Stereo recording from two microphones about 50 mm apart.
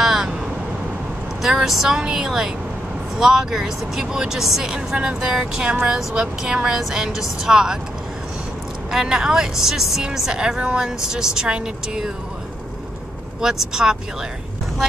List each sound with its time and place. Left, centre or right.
0.0 s vehicle: centre
1.4 s speech: centre
8.9 s speech: centre
13.4 s speech: centre